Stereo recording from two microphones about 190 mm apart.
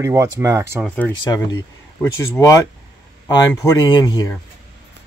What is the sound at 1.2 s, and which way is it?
Speech, 20° left (ahead or behind).